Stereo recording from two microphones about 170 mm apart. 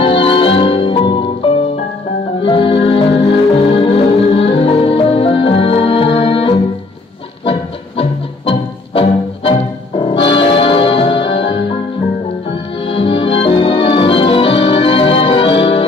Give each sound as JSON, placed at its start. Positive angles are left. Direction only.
{"t": 0.0, "sound": "music", "side_deg": 35}
{"t": 8.0, "sound": "music", "side_deg": 35}
{"t": 12.8, "sound": "organ", "side_deg": 30}